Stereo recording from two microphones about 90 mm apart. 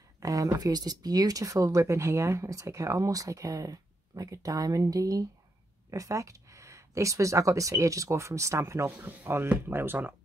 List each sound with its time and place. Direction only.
0.2 s speech: 40° right (ahead or behind)
8.9 s speech: 20° right (ahead or behind)